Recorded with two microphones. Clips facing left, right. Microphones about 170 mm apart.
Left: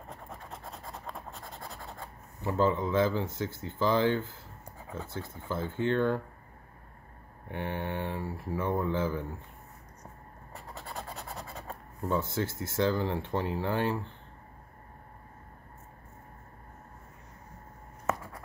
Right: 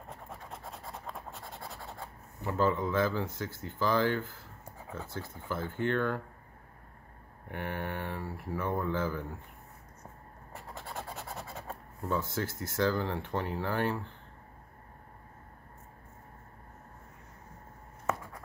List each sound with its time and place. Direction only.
0.1 s scratch: 5° right (ahead or behind)
2.4 s speech: 25° left (ahead or behind)
7.5 s speech: 20° left (ahead or behind)
10.9 s scratch: 5° right (ahead or behind)
12.1 s speech: 25° left (ahead or behind)